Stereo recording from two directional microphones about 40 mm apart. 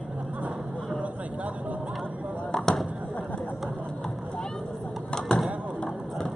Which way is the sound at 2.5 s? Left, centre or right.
Centre.